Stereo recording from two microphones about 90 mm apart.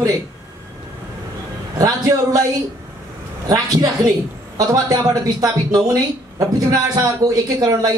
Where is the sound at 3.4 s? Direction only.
45° right (ahead or behind).